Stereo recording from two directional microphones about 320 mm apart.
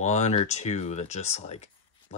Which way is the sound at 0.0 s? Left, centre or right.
Left.